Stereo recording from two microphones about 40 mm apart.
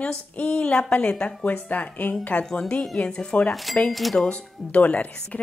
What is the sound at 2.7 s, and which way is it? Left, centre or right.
Speech, left.